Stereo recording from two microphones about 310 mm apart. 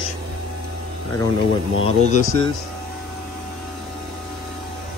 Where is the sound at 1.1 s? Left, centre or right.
Centre.